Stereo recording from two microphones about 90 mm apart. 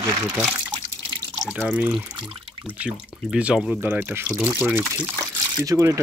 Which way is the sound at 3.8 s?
25° right (ahead or behind).